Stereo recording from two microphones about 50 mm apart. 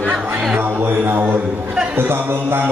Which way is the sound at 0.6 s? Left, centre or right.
Right.